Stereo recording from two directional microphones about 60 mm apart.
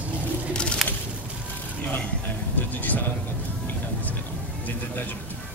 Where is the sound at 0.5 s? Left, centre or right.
Centre.